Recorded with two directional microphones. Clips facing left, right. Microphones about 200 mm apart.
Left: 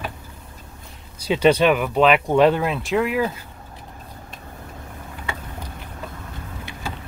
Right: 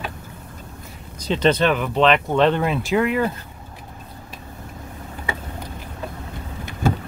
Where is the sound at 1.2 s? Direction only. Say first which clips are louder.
Left 2 dB; 10° left (ahead or behind).